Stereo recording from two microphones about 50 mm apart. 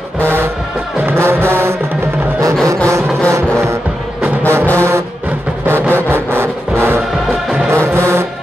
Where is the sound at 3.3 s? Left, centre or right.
Right.